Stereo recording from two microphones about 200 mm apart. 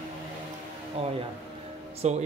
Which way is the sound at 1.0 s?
30° right (ahead or behind).